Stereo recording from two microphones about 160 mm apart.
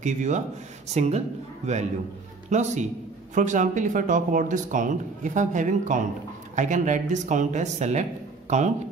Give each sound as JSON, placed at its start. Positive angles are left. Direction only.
{"t": 0.0, "sound": "speech", "side_deg": -50}
{"t": 2.5, "sound": "speech", "side_deg": -50}